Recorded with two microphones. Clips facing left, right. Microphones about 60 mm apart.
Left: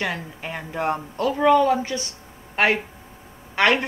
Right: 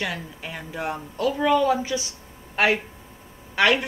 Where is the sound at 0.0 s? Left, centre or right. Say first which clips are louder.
Left 2 dB; left.